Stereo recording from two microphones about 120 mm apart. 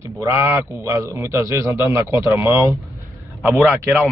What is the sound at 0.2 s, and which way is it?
A man's voice, 20° right (ahead or behind).